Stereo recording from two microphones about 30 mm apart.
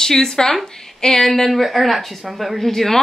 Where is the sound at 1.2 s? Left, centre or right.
Centre.